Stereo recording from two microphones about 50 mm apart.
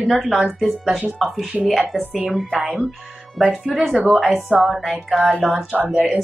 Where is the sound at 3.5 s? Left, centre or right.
Centre.